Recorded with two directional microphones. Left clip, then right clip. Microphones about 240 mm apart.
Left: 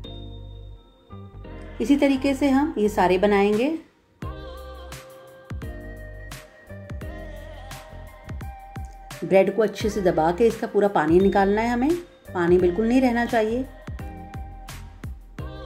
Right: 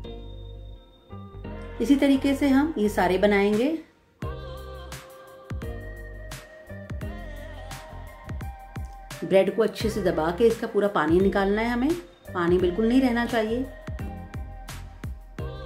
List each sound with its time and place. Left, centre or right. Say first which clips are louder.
1.4 s music: even; centre
2.2 s a woman's voice: left 1 dB; centre
4.2 s music: even; centre
8.3 s a woman's voice: left 2 dB; centre
13.8 s music: left 1 dB; centre